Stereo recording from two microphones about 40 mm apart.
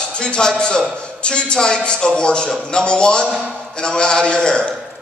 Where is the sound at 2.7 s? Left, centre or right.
Left.